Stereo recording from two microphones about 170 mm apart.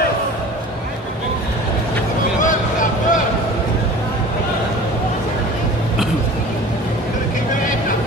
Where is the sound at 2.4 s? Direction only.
50° left (ahead or behind).